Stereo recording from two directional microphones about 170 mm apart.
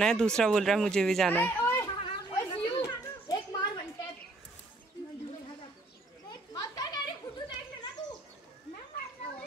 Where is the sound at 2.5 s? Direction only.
30° left (ahead or behind).